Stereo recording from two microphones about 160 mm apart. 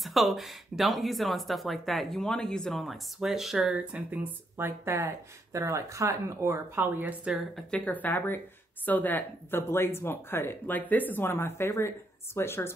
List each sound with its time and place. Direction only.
0.0 s speech: centre (ahead or behind)
7.7 s speech: 10° left (ahead or behind)